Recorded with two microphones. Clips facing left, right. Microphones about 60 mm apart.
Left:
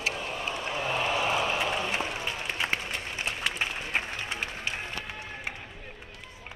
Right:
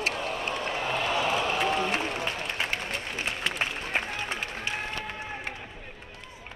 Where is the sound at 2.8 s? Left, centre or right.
Right.